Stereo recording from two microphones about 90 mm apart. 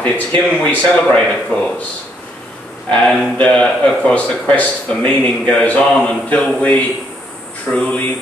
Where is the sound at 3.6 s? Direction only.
15° left (ahead or behind).